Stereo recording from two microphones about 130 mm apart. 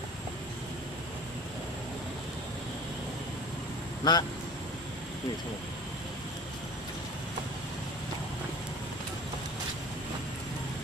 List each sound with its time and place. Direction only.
4.0 s speech: 35° left (ahead or behind)